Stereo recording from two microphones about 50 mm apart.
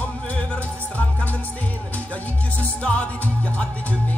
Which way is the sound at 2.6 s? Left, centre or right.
Left.